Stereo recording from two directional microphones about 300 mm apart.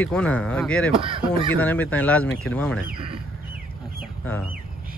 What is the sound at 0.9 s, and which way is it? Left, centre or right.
Speech, centre.